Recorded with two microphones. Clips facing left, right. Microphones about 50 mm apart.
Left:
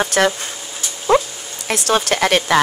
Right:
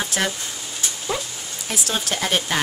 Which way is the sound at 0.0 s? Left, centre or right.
Left.